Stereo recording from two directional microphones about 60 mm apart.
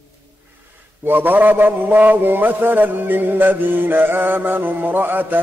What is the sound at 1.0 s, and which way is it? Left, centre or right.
A man's voice, right.